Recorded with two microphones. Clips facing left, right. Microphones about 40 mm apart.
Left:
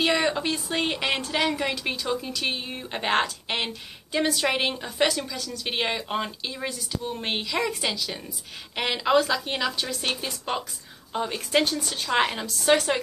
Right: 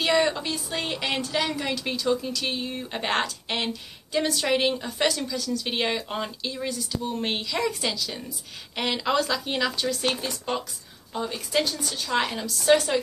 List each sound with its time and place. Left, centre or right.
0.0 s a woman's voice: centre
11.1 s speech: left